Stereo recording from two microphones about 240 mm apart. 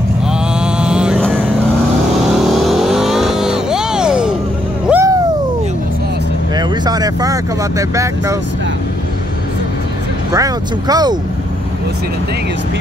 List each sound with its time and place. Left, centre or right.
0.3 s vehicle: centre
4.8 s a sound: centre
6.5 s vehicle: centre
10.3 s speech: centre